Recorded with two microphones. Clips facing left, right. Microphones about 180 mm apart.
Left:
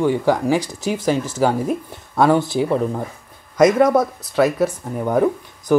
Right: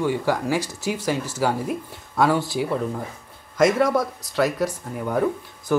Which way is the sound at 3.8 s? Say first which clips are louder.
Left 5 dB; 15° left (ahead or behind).